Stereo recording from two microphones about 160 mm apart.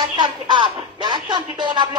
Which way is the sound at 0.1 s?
30° right (ahead or behind).